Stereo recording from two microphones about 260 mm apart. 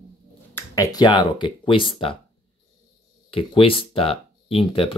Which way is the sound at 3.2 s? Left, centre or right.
Left.